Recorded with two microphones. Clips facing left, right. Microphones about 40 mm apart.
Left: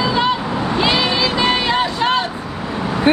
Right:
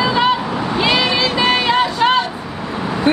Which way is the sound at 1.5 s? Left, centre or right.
Centre.